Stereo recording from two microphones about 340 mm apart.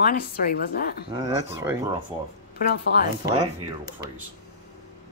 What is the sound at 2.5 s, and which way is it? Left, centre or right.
Speech, left.